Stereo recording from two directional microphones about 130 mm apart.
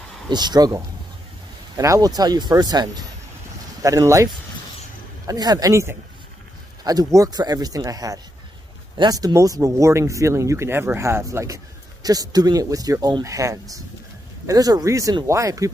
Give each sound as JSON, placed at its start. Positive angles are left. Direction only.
{"t": 0.3, "sound": "speech", "side_deg": -35}